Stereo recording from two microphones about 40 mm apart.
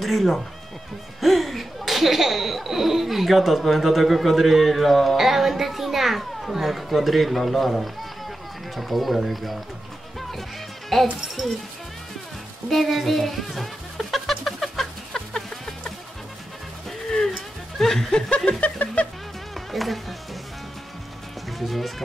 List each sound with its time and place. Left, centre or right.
0.0 s speech: centre
10.9 s speech: centre
12.6 s speech: centre
14.3 s chicken: centre
17.7 s speech: centre
18.6 s a sound: left
19.5 s music: centre
21.5 s speech: centre